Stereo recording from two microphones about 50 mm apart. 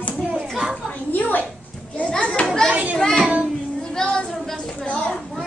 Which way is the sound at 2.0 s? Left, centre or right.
Left.